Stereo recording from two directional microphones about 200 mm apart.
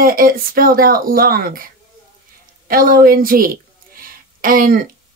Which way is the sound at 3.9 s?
45° right (ahead or behind).